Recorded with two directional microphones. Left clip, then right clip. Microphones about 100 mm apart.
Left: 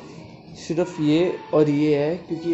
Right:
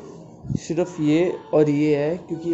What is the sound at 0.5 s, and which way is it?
Speech, 5° right (ahead or behind).